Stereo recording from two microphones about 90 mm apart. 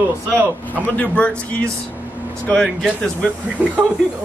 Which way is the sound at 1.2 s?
10° left (ahead or behind).